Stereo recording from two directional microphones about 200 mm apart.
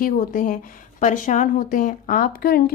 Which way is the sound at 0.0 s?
45° left (ahead or behind).